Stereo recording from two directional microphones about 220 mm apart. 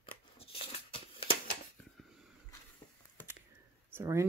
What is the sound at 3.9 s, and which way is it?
Speech, 15° right (ahead or behind).